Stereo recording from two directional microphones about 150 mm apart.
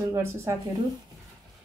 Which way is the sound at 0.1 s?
15° right (ahead or behind).